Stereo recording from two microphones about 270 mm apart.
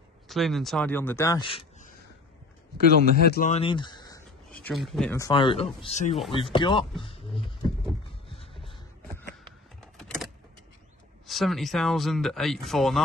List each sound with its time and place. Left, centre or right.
0.3 s speech: centre; by 2.0 s left
3.2 s speech: left; by 5.1 s centre
5.1 s speech: centre
7.0 s a sound: centre
9.8 s vehicle: centre
11.2 s speech: centre